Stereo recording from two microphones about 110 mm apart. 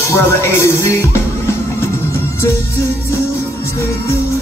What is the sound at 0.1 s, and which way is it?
Music, 25° left (ahead or behind).